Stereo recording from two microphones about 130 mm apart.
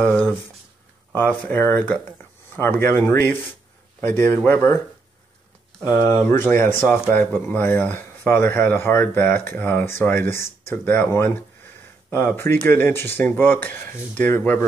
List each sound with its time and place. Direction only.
0.0 s speech: 10° left (ahead or behind)
5.9 s speech: 25° left (ahead or behind)